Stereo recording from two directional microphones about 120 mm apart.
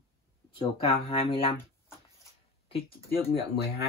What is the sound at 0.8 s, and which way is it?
Speech, 50° left (ahead or behind).